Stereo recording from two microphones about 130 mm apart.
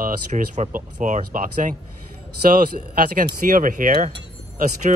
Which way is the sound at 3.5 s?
90° right.